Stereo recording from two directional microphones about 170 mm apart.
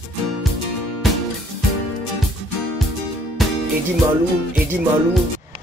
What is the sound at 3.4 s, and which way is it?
Music, centre (ahead or behind).